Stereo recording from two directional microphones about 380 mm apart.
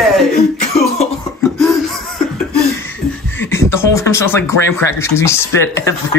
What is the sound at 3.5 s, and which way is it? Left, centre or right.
Speech, centre.